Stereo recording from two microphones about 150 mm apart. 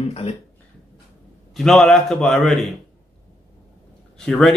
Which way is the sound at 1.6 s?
Centre (ahead or behind).